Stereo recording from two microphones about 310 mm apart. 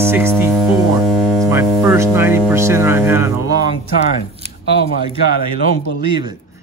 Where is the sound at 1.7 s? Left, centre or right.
Centre.